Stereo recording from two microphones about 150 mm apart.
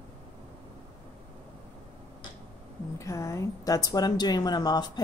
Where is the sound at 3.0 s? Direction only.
20° left (ahead or behind).